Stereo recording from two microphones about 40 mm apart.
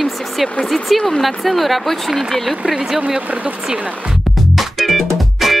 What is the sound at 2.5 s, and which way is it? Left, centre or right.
Speech, centre.